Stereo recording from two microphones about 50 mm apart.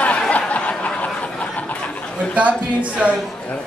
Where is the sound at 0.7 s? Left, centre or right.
Left.